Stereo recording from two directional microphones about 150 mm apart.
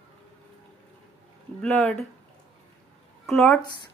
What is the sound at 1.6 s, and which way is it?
Speech, 5° left (ahead or behind).